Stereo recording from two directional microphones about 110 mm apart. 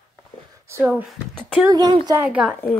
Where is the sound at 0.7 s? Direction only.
25° right (ahead or behind).